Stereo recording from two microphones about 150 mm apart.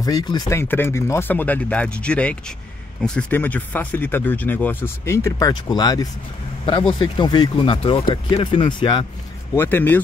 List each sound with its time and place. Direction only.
0.0 s speech: 25° left (ahead or behind)
9.6 s speech: 15° left (ahead or behind)